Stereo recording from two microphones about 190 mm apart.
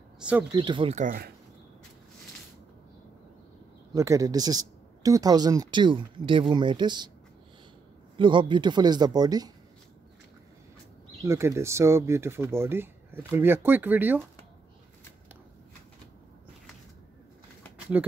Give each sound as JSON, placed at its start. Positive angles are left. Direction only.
{"t": 0.2, "sound": "speech", "side_deg": -5}
{"t": 0.5, "sound": "speech", "side_deg": -25}
{"t": 0.9, "sound": "speech", "side_deg": -50}
{"t": 3.9, "sound": "speech", "side_deg": -15}
{"t": 8.2, "sound": "speech", "side_deg": -25}
{"t": 11.2, "sound": "speech", "side_deg": -15}
{"t": 17.9, "sound": "speech", "side_deg": -10}